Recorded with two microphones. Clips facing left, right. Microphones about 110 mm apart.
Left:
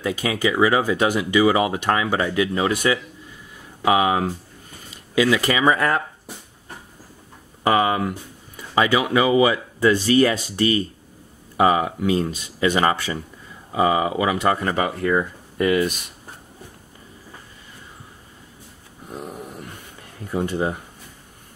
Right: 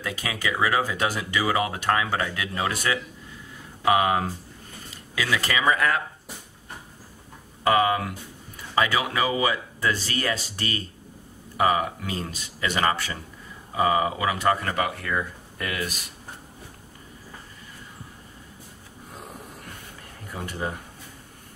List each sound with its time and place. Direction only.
0.0 s speech: 20° left (ahead or behind)
7.6 s speech: 20° left (ahead or behind)
20.3 s speech: 20° left (ahead or behind)